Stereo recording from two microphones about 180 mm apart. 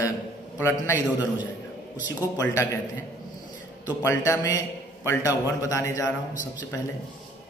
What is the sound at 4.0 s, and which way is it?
A man's voice, 15° left (ahead or behind).